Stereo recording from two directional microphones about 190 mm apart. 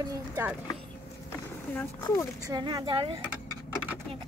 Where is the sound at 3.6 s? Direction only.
5° right (ahead or behind).